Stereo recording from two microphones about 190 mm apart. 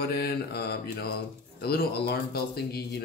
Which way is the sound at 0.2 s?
55° left (ahead or behind).